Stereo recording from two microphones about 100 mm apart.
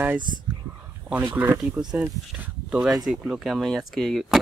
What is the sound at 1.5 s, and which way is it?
Speech, 35° right (ahead or behind).